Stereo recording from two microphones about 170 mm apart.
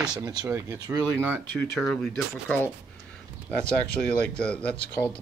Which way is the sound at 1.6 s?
Centre (ahead or behind).